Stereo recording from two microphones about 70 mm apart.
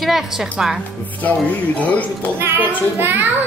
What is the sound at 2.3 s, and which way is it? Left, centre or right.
Speech, right.